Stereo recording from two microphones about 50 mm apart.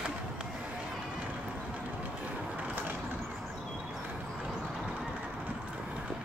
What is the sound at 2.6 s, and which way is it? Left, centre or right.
Vehicle, right.